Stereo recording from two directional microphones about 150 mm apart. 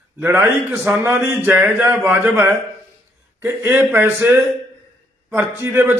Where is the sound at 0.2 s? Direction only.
15° right (ahead or behind).